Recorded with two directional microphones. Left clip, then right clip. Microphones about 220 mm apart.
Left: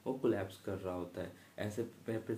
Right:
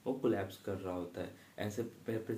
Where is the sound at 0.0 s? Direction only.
15° left (ahead or behind).